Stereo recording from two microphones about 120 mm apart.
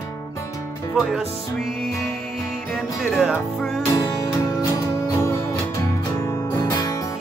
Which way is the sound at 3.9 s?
30° left (ahead or behind).